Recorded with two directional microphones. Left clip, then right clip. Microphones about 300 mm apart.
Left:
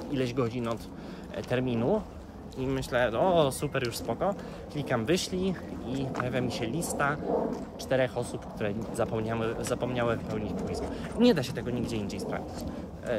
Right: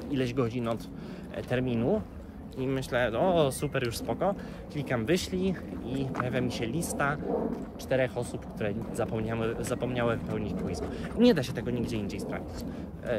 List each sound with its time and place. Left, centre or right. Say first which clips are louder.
0.1 s speech: even; centre